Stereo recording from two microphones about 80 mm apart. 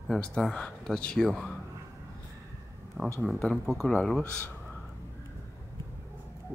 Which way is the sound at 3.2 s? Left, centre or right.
Centre.